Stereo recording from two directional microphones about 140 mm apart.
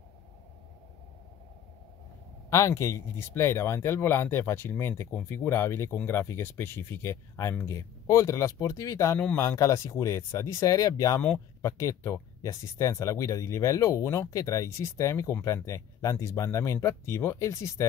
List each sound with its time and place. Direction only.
2.5 s speech: 20° left (ahead or behind)